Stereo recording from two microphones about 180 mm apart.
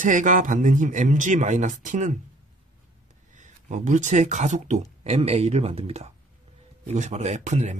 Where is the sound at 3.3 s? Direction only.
40° right (ahead or behind).